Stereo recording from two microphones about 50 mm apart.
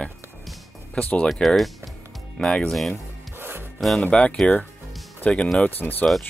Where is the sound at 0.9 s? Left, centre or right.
Left.